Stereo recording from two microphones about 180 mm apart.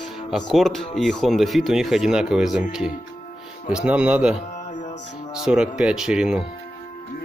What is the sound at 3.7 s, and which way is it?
Speech, 5° right (ahead or behind).